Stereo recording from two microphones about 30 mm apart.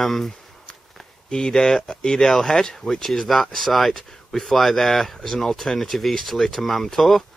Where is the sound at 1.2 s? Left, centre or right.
Left.